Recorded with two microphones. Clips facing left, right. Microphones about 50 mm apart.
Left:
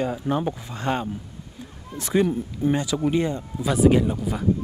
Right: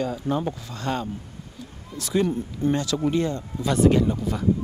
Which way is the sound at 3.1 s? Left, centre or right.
Centre.